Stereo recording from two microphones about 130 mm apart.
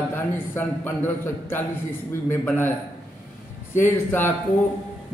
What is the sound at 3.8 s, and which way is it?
Speech, 15° left (ahead or behind).